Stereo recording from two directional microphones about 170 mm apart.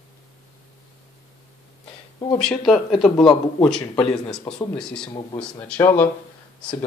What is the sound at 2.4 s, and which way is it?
Speech, 5° left (ahead or behind).